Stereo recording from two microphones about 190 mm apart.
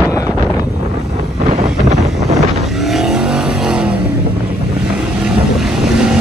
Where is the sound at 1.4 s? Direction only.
35° right (ahead or behind).